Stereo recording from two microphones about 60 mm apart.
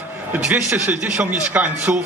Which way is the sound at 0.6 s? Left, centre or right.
Right.